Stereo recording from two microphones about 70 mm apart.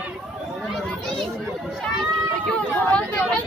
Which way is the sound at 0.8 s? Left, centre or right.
Centre.